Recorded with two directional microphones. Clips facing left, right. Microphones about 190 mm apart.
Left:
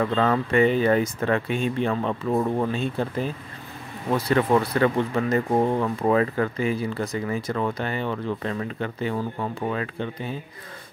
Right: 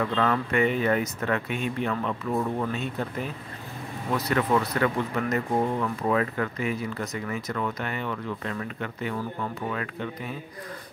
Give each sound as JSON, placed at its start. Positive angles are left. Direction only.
{"t": 0.0, "sound": "speech", "side_deg": 35}